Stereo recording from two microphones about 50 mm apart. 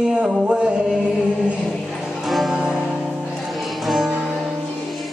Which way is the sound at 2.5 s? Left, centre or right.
Centre.